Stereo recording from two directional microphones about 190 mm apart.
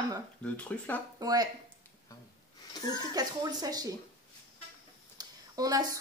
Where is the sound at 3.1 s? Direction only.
20° right (ahead or behind).